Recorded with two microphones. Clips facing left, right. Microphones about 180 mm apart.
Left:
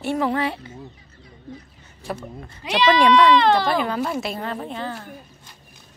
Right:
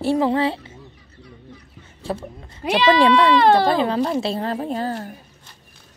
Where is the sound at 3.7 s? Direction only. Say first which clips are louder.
Right 3 dB; 30° right (ahead or behind).